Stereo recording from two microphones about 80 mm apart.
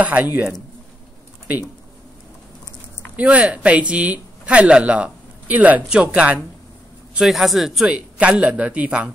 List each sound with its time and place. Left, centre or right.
0.0 s speech: right
3.2 s speech: centre
7.2 s speech: centre
7.8 s speech: centre